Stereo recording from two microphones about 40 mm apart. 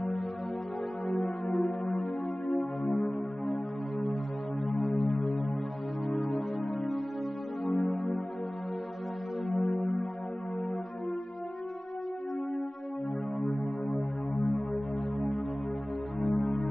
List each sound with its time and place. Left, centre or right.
1.0 s music: centre
4.9 s music: centre
7.7 s music: centre
9.6 s music: centre
13.4 s music: centre
16.3 s music: centre